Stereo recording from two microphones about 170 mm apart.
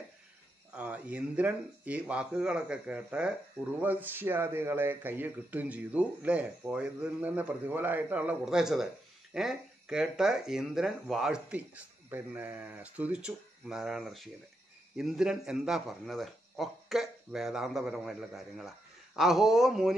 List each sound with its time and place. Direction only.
0.7 s speech: 5° right (ahead or behind)